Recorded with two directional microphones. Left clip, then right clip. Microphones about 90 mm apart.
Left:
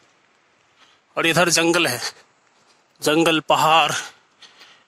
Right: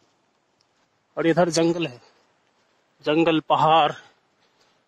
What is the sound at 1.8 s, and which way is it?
Speech, 10° left (ahead or behind).